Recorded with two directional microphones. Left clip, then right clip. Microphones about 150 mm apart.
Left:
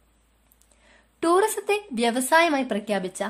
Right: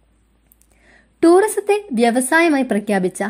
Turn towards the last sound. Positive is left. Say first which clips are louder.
# right 7 dB
turn(degrees=-30)  # may be behind; listen again after turning